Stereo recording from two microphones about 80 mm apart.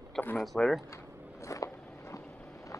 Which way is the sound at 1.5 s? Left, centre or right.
Left.